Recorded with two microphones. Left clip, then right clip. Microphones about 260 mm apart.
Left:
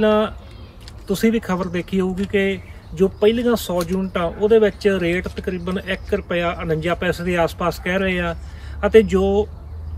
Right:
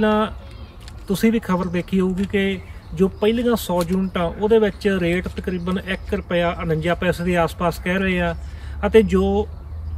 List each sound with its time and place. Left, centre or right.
0.0 s speech: centre